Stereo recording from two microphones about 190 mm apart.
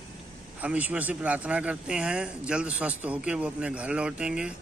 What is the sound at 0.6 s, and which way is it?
Speech, 10° right (ahead or behind).